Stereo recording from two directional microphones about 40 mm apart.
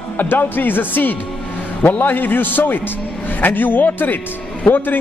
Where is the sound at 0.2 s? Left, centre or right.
Left.